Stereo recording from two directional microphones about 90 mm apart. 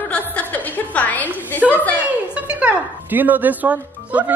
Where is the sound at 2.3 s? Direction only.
15° right (ahead or behind).